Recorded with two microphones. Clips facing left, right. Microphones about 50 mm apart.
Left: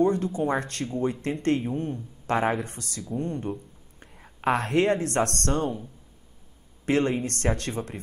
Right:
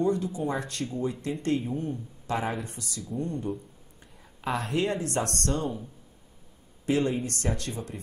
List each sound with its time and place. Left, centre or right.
0.0 s a woman's voice: left
6.9 s speech: left